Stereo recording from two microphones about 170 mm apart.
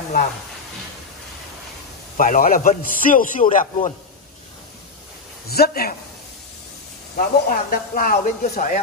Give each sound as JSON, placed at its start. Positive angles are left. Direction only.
{"t": 2.1, "sound": "a man's voice", "side_deg": 50}
{"t": 5.5, "sound": "a man's voice", "side_deg": 65}
{"t": 7.2, "sound": "a man's voice", "side_deg": 55}